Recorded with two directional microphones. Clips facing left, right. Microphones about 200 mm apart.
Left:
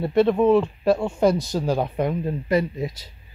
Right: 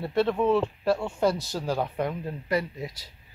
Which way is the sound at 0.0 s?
15° left (ahead or behind).